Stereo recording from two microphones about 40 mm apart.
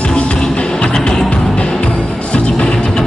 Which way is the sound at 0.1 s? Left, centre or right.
Left.